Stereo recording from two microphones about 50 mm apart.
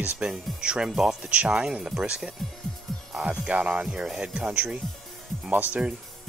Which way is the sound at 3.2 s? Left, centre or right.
Right.